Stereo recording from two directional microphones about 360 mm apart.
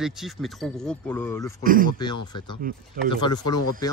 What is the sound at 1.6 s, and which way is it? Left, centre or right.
Speech, right.